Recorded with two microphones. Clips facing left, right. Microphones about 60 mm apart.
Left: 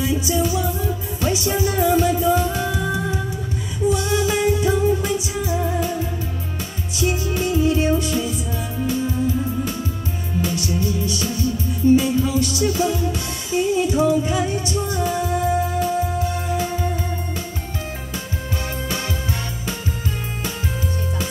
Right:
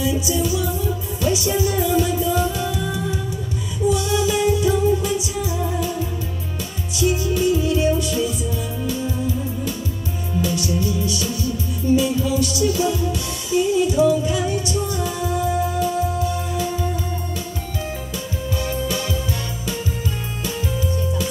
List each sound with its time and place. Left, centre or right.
0.0 s music: left
7.0 s music: left
10.4 s music: left
18.6 s music: left